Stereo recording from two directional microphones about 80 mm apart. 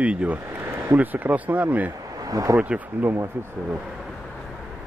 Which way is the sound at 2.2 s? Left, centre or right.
Right.